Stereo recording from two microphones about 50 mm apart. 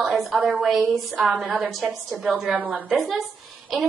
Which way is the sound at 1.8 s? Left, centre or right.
Centre.